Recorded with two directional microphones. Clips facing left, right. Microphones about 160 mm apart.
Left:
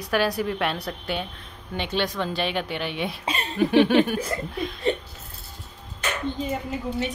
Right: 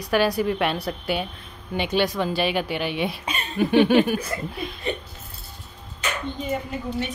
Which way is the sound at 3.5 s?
Centre (ahead or behind).